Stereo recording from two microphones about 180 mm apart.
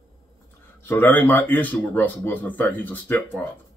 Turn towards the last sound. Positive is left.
turn(degrees=10)  # may be behind; listen again after turning